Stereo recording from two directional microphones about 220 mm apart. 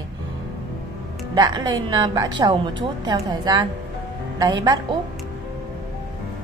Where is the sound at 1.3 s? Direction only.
20° right (ahead or behind).